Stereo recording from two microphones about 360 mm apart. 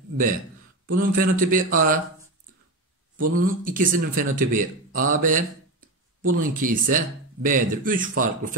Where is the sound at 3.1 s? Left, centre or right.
Right.